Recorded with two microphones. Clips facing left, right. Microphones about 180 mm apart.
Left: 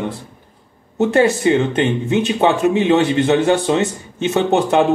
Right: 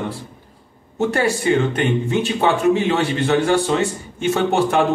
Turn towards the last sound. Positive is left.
turn(degrees=20)  # may be behind; listen again after turning